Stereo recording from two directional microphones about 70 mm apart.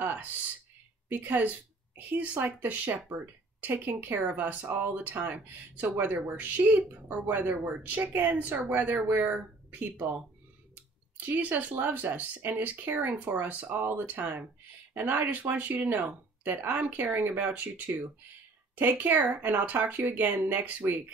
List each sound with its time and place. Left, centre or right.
0.0 s a sound: right
1.0 s a woman's voice: right
11.1 s speech: right
18.8 s speech: right